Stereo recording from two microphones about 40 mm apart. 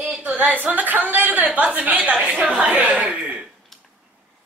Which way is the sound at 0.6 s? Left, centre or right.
Right.